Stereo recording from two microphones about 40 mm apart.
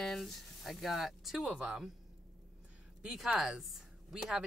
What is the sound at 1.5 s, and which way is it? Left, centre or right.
Speech, right.